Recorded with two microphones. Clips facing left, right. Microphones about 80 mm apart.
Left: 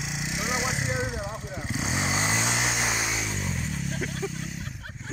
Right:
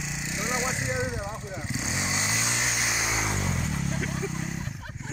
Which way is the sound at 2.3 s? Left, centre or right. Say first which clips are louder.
Left 3 dB; left.